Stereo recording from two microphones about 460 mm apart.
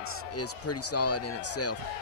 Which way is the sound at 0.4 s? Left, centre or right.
Left.